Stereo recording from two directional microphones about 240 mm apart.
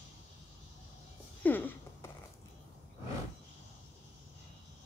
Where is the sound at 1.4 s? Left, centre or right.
Centre.